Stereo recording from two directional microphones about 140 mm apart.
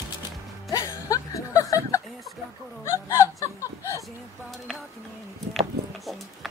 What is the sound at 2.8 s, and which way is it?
Laughter, 20° left (ahead or behind).